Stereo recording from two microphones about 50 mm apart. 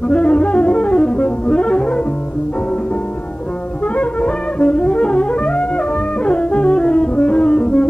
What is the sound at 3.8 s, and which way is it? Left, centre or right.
Music, left.